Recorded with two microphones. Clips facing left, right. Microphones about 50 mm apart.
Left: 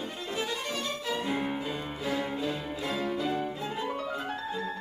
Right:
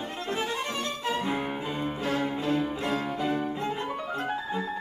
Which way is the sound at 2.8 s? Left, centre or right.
Right.